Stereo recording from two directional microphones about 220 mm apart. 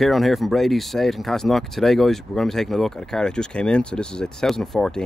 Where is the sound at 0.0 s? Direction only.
Centre (ahead or behind).